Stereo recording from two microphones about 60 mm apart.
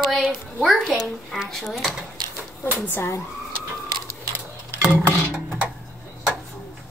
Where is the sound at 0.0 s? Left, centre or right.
Centre.